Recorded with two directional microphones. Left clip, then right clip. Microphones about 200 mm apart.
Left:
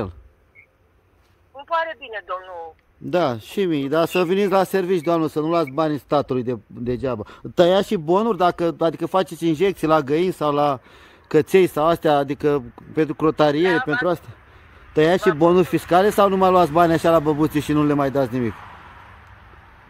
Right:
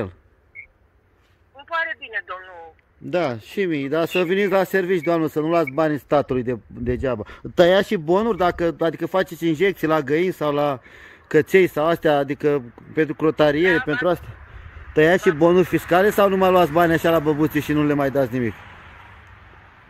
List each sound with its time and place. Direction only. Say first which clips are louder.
1.6 s speech: left 2 dB; 25° left (ahead or behind)
15.0 s speech: right 1 dB; 5° left (ahead or behind)